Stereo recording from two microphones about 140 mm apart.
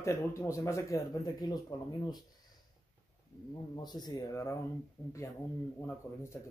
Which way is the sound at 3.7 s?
30° left (ahead or behind).